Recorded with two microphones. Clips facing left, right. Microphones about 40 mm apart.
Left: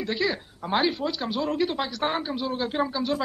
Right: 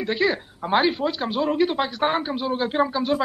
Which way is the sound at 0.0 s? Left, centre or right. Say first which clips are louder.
Right 4 dB; right.